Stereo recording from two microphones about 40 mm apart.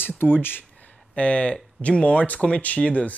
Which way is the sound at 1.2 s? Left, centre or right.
Left.